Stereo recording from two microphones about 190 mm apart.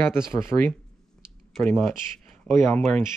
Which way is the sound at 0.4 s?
10° left (ahead or behind).